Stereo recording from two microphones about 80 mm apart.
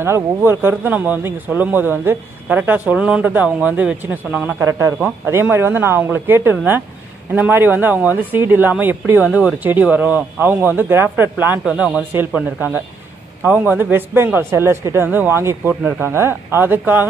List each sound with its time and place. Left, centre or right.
0.0 s a man's voice: right
4.3 s a man's voice: centre
4.6 s a man's voice: right
11.6 s a man's voice: centre